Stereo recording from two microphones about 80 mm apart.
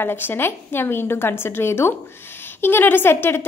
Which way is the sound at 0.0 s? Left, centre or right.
Left.